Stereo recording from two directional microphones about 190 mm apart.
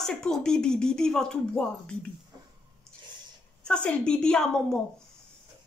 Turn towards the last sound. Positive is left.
turn(degrees=5)  # may be behind; listen again after turning